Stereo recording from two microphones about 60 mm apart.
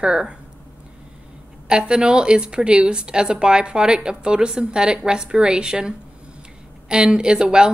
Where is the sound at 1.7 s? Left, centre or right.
Centre.